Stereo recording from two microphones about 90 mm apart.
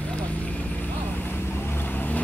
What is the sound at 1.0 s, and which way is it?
Vehicle, 20° left (ahead or behind).